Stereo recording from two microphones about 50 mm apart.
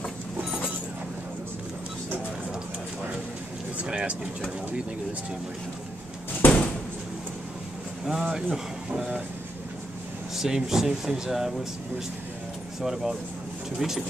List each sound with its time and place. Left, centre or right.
3.7 s speech: right
6.4 s door: left
8.0 s speech: centre
10.3 s speech: centre
12.8 s speech: centre